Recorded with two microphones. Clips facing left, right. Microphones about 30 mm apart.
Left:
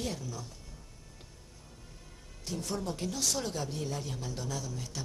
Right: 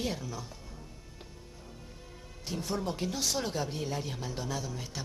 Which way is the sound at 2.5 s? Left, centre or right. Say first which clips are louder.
Right 2 dB; centre.